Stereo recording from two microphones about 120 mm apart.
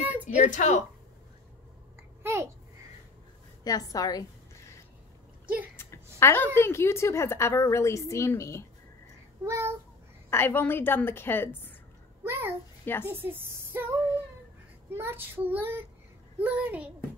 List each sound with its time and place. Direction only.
0.0 s a sound: 15° right (ahead or behind)
0.5 s a woman's voice: 90° left
3.6 s a woman's voice: 30° left (ahead or behind)
6.1 s a woman's voice: 20° left (ahead or behind)
9.4 s child singing: 25° right (ahead or behind)
10.3 s a woman's voice: 20° left (ahead or behind)
12.2 s a child's voice: 20° right (ahead or behind)
15.0 s child singing: 20° right (ahead or behind)
16.3 s a woman's voice: 15° right (ahead or behind)